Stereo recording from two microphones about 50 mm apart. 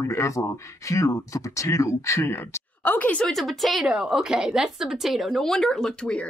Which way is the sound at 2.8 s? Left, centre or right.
Left.